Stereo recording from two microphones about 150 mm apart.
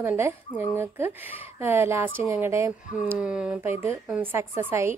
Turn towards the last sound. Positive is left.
turn(degrees=-15)  # may be behind; listen again after turning